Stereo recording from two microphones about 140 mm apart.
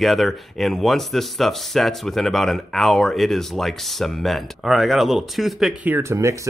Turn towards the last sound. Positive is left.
turn(degrees=-20)  # may be behind; listen again after turning